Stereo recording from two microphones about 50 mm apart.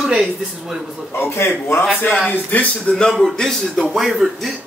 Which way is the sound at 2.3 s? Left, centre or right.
Left.